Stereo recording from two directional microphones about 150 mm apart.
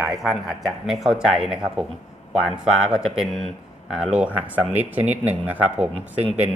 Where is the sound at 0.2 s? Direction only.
Centre (ahead or behind).